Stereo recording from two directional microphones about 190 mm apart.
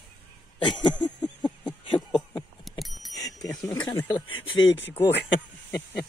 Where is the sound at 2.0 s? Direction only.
10° left (ahead or behind).